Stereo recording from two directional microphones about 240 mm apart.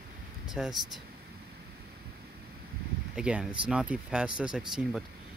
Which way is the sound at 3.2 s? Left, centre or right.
Centre.